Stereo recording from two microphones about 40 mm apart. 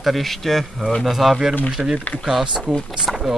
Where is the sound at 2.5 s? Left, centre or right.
Centre.